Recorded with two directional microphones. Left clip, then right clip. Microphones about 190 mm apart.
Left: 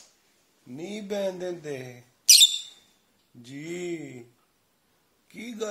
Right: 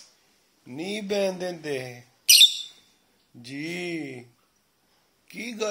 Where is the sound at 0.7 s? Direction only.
35° right (ahead or behind).